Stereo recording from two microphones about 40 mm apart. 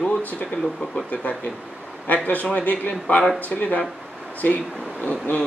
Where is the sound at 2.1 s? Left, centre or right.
Left.